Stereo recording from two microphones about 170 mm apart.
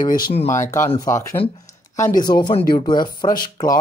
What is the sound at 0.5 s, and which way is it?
Speech, 15° left (ahead or behind).